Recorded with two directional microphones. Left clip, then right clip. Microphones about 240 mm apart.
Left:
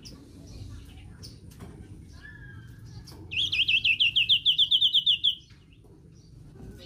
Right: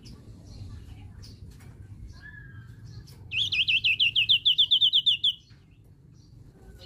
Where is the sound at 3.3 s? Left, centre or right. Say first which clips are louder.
Even; centre.